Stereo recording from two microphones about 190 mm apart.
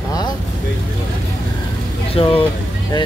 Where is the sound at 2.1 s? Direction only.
30° left (ahead or behind).